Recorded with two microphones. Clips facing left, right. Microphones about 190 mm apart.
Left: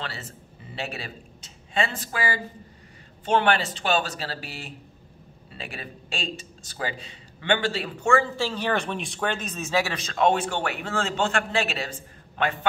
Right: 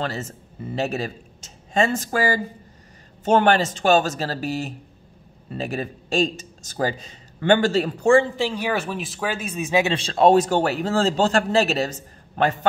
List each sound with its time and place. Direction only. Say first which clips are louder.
0.0 s a man's voice: right 9 dB; 45° right (ahead or behind)
8.4 s speech: right 2 dB; 10° right (ahead or behind)
9.9 s a man's voice: right 9 dB; 30° right (ahead or behind)